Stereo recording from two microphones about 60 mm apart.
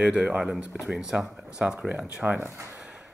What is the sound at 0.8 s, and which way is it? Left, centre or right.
Speech, centre.